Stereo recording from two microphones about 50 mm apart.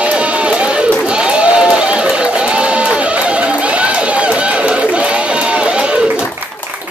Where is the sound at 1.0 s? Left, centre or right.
Centre.